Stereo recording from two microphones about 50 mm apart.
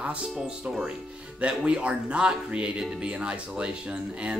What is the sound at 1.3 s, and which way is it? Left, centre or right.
Speech, right.